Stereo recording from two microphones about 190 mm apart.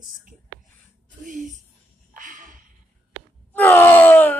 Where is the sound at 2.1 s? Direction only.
45° right (ahead or behind).